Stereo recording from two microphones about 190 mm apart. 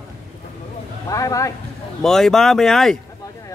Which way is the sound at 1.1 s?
15° left (ahead or behind).